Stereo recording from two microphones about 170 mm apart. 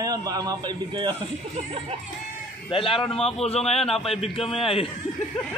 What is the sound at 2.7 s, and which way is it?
A man's voice, 30° left (ahead or behind).